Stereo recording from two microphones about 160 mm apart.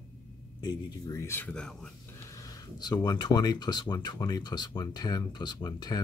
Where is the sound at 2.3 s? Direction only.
20° left (ahead or behind).